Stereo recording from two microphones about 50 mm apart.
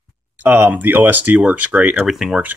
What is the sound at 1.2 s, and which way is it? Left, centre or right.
Speech, right.